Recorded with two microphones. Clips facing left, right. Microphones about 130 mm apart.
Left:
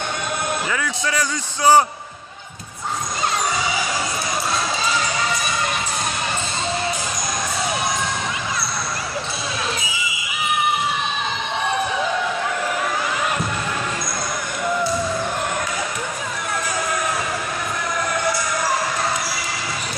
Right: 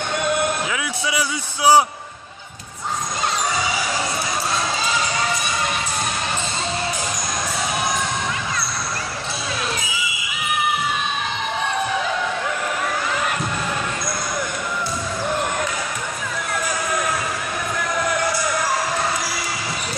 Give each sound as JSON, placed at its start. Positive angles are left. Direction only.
{"t": 0.7, "sound": "a man's voice", "side_deg": -10}